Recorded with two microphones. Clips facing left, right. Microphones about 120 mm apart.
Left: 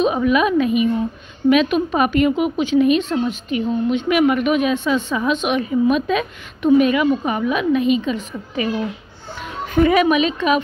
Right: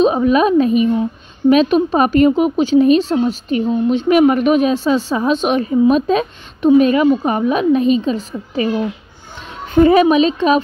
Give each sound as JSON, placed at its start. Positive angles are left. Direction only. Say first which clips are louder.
{"t": 0.0, "sound": "speech", "louder": "right 4 dB", "side_deg": -30}